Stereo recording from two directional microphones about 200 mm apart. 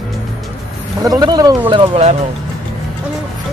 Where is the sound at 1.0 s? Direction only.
20° right (ahead or behind).